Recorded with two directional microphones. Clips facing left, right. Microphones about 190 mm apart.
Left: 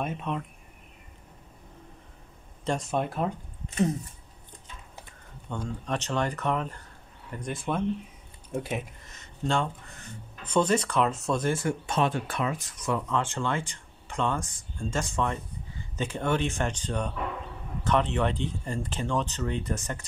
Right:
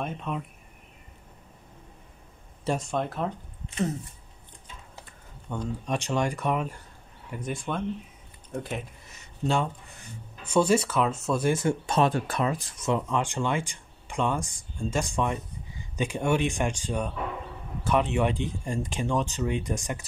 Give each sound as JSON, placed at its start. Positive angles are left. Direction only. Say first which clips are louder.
{"t": 0.0, "sound": "speech", "louder": "left 1 dB", "side_deg": 0}
{"t": 2.6, "sound": "speech", "louder": "right 1 dB", "side_deg": -5}
{"t": 2.9, "sound": "speech", "louder": "left 1 dB", "side_deg": 10}
{"t": 5.5, "sound": "speech", "louder": "right 2 dB", "side_deg": -10}
{"t": 9.0, "sound": "speech", "louder": "right 2 dB", "side_deg": -10}
{"t": 11.4, "sound": "speech", "louder": "right 4 dB", "side_deg": -20}
{"t": 11.8, "sound": "speech", "louder": "right 3 dB", "side_deg": -40}